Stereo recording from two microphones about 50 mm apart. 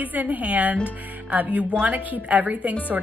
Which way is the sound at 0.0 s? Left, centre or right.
Right.